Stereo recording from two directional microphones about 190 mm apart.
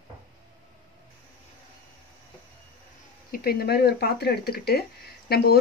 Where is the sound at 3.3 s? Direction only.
50° left (ahead or behind).